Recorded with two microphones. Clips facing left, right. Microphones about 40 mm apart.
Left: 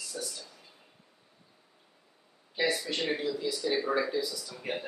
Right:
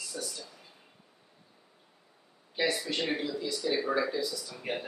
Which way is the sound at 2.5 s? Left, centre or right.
Centre.